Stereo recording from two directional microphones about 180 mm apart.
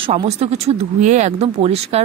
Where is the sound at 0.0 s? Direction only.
35° right (ahead or behind).